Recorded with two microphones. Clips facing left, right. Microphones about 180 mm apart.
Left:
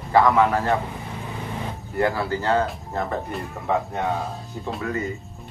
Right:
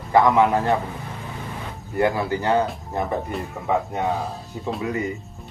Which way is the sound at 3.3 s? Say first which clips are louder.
Right 1 dB; centre (ahead or behind).